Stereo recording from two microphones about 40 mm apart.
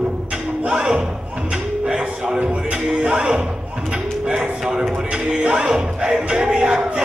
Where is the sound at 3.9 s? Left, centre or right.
Centre.